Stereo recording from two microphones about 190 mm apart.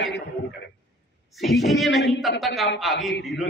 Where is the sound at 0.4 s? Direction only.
45° left (ahead or behind).